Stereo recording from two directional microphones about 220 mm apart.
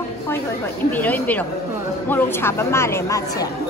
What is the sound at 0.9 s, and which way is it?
Speech, 10° left (ahead or behind).